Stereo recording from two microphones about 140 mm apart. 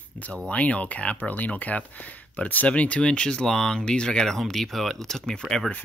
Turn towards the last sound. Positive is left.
turn(degrees=5)  # may be behind; listen again after turning